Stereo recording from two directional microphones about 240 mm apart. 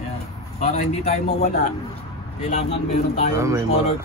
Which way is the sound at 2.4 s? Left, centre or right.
Left.